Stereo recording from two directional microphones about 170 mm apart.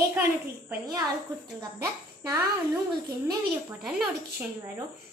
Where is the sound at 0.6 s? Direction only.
20° right (ahead or behind).